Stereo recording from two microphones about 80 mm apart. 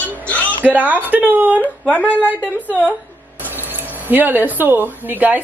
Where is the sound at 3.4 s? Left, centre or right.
Right.